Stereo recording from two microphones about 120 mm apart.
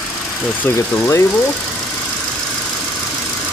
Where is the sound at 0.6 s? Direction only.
20° left (ahead or behind).